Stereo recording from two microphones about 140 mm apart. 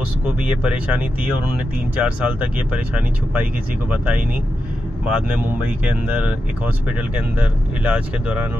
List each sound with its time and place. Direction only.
2.0 s speech: 10° right (ahead or behind)
3.9 s speech: 10° right (ahead or behind)